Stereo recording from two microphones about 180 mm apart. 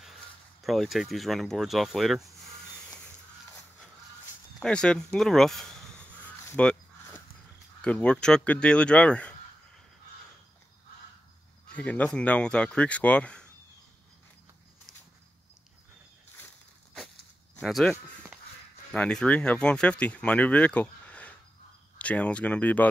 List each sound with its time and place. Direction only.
0.0 s speech: centre (ahead or behind)
4.6 s a sound: 5° left (ahead or behind)
7.8 s speech: 5° left (ahead or behind)
11.7 s speech: 10° left (ahead or behind)
17.6 s speech: centre (ahead or behind)